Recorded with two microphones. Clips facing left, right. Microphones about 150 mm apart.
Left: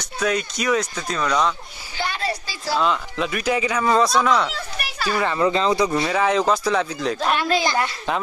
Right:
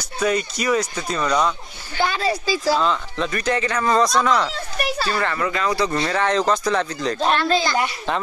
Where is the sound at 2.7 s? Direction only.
5° left (ahead or behind).